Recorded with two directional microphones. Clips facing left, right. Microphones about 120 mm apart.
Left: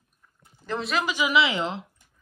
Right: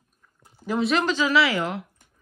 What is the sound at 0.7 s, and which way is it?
Child singing, centre (ahead or behind).